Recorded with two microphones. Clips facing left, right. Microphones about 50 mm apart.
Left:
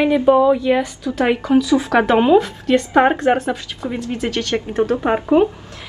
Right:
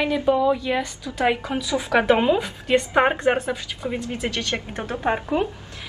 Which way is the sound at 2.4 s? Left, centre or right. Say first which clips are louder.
Left 4 dB; centre.